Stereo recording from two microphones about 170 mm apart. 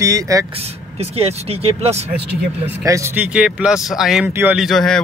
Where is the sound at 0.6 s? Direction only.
35° right (ahead or behind).